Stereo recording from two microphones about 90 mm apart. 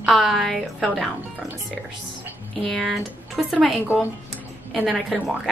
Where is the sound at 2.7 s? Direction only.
Centre (ahead or behind).